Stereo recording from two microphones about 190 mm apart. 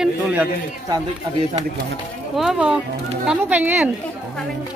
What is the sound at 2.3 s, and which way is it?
Speech, centre (ahead or behind).